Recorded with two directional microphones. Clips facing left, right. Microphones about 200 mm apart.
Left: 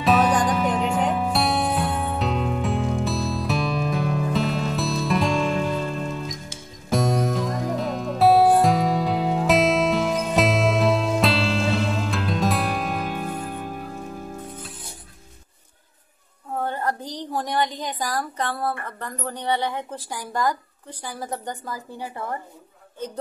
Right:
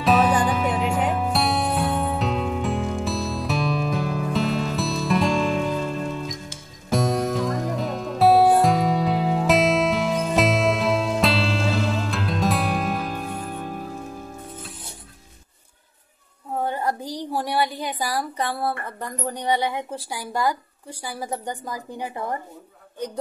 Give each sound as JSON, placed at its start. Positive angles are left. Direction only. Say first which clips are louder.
{"t": 0.0, "sound": "music", "louder": "even", "side_deg": 0}
{"t": 16.6, "sound": "a sound", "louder": "right 1 dB", "side_deg": -10}
{"t": 21.0, "sound": "a woman's voice", "louder": "right 1 dB", "side_deg": -10}